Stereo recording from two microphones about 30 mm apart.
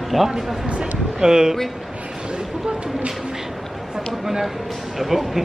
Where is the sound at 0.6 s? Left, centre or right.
Right.